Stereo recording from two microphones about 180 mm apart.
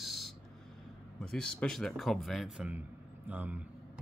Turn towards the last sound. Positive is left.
turn(degrees=-10)  # may be behind; listen again after turning